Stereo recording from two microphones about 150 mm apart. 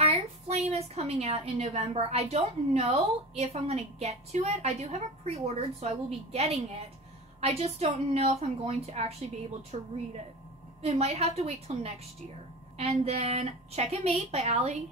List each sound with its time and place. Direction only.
0.0 s a woman's voice: 45° right (ahead or behind)
10.8 s a woman's voice: 45° right (ahead or behind)